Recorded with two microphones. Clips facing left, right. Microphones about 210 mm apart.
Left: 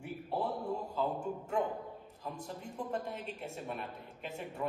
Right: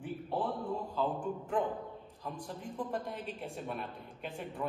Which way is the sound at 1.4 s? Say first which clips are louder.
Right 1 dB; 10° left (ahead or behind).